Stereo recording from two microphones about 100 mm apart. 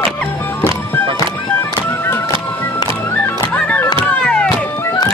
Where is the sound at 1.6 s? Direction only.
25° left (ahead or behind).